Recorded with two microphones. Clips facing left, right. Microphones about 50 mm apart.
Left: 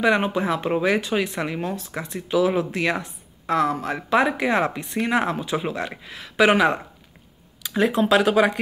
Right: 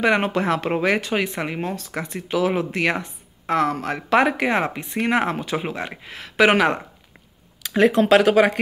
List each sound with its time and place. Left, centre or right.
0.0 s speech: right
0.3 s speech: right